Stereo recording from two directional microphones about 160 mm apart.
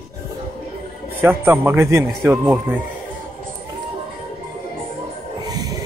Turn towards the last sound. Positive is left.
turn(degrees=-25)  # may be behind; listen again after turning